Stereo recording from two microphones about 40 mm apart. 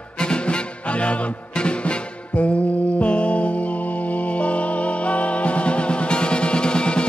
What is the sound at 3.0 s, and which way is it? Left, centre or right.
Music, left.